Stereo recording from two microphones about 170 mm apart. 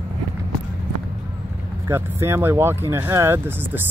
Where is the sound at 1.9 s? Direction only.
15° right (ahead or behind).